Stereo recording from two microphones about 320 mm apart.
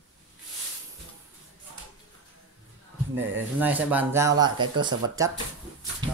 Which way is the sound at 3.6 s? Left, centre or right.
Centre.